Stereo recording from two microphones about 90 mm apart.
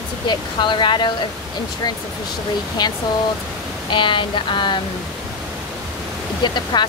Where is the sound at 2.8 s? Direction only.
55° left (ahead or behind).